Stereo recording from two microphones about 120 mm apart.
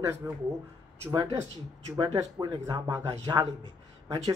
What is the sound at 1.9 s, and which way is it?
Speech, 35° right (ahead or behind).